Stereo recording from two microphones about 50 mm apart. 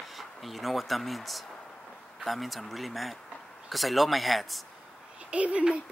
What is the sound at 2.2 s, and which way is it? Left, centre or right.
Speech, centre.